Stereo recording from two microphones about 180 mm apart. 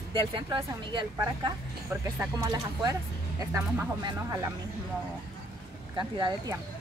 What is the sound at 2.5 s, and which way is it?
Speech, 20° right (ahead or behind).